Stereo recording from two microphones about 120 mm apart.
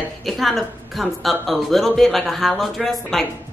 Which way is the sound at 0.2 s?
Centre (ahead or behind).